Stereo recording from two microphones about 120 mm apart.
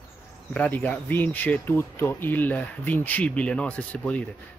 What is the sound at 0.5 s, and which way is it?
Speech, 15° left (ahead or behind).